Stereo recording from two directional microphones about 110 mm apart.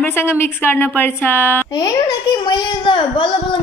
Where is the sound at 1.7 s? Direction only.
40° left (ahead or behind).